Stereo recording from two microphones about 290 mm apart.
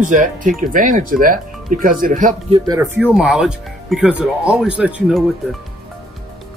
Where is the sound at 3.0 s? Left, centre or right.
Centre.